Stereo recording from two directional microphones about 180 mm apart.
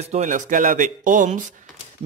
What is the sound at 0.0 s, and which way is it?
Speech, 40° right (ahead or behind).